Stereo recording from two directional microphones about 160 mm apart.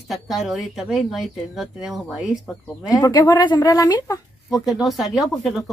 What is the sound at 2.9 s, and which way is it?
Speech, 25° left (ahead or behind).